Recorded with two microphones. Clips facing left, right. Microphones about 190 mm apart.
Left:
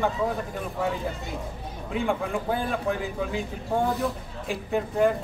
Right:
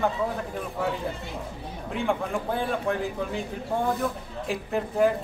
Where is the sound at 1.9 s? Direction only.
Centre (ahead or behind).